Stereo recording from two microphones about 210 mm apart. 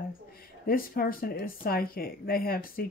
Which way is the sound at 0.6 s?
45° left (ahead or behind).